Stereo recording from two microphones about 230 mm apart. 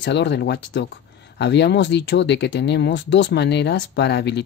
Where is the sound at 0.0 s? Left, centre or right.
Left.